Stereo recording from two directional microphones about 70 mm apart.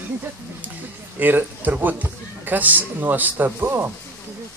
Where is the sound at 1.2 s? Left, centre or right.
Right.